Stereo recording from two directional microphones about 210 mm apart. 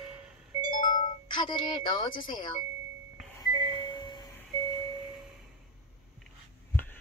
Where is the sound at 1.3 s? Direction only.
20° left (ahead or behind).